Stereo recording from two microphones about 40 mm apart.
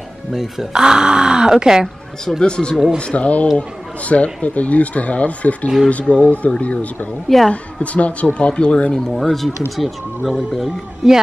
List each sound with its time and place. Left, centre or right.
0.3 s speech: centre
2.4 s speech: left
7.3 s a woman's voice: centre
7.8 s speech: left
9.1 s speech: centre